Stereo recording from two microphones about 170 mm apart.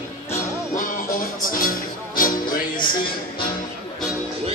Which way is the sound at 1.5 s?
55° left (ahead or behind).